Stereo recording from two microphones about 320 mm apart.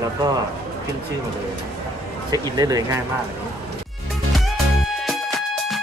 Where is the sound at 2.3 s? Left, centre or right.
Centre.